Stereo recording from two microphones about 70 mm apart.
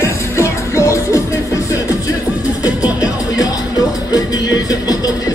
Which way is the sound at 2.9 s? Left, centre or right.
Left.